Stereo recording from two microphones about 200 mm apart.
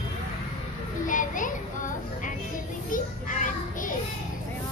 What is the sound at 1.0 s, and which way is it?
Child singing, 40° left (ahead or behind).